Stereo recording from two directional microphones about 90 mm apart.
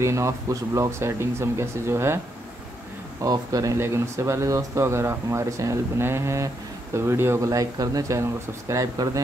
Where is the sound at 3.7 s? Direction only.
30° right (ahead or behind).